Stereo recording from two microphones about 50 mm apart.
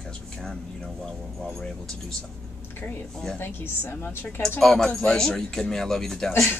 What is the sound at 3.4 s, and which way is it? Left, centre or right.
Speech, left.